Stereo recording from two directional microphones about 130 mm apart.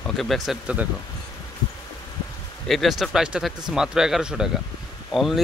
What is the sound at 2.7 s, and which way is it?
Speech, centre (ahead or behind).